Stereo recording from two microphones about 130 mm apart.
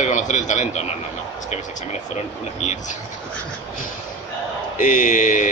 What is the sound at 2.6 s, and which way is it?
Speech, 65° left (ahead or behind).